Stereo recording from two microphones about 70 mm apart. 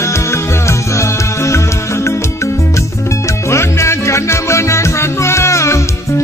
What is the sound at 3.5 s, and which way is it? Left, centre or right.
Music, left.